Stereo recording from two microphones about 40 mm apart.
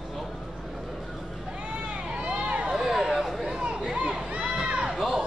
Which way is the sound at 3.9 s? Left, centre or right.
Right.